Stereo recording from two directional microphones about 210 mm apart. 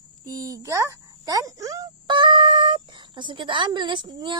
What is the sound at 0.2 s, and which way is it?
Speech, 15° right (ahead or behind).